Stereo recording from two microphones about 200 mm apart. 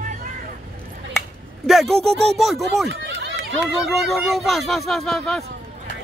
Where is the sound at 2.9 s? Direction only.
60° right (ahead or behind).